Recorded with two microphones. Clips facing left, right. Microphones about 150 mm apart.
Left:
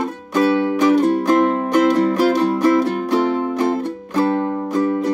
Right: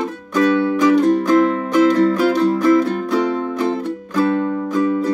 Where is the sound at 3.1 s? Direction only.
25° left (ahead or behind).